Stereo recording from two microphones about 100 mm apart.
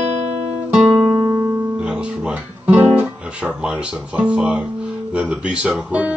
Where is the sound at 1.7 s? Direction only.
10° right (ahead or behind).